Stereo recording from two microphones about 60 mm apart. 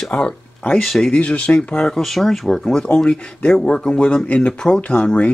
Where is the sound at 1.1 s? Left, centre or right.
Left.